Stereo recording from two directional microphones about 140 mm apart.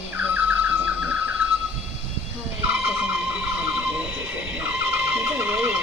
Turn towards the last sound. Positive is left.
turn(degrees=-15)  # may be behind; listen again after turning